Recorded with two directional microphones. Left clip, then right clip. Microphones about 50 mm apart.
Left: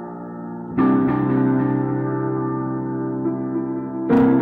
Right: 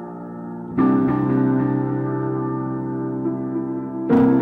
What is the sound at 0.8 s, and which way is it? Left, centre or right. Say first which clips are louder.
Music: even; left.